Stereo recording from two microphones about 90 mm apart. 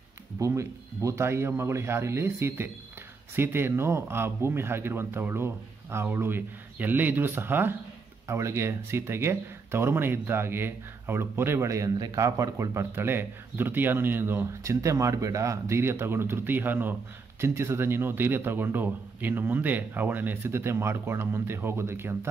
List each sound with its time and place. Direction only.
0.4 s a man's voice: 35° right (ahead or behind)
12.9 s a man's voice: 25° right (ahead or behind)